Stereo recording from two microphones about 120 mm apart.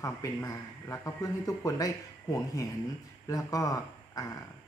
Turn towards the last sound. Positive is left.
turn(degrees=30)  # may be behind; listen again after turning